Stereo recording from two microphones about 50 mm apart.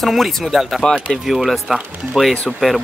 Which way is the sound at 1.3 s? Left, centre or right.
Centre.